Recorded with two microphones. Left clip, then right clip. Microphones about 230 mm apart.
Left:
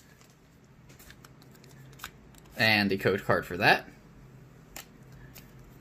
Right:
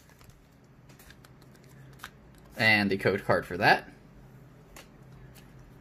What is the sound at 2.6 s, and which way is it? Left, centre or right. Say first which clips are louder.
Speech: right 1 dB; centre.